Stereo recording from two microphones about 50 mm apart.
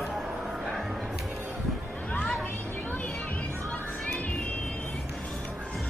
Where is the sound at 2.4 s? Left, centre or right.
Left.